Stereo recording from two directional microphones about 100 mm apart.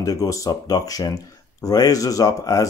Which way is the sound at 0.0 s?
35° left (ahead or behind).